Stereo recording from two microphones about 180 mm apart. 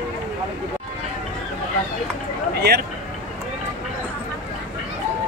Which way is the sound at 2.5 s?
65° right (ahead or behind).